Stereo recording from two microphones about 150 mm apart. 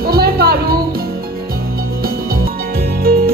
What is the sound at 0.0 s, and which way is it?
Music, 90° right.